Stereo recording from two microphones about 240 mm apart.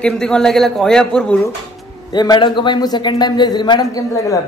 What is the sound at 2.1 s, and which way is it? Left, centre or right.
A man's voice, centre.